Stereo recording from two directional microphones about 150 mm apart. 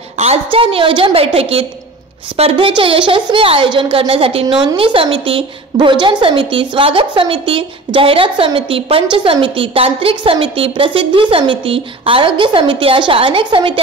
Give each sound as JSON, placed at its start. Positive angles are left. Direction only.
{"t": 0.2, "sound": "a woman's voice", "side_deg": -40}